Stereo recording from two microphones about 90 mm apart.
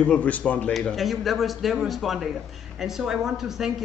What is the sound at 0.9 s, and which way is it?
Speech, centre (ahead or behind).